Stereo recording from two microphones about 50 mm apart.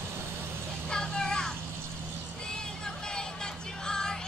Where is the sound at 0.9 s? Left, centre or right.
Centre.